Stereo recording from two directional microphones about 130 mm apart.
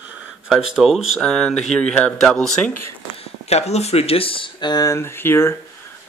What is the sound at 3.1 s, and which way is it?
Speech, 55° left (ahead or behind).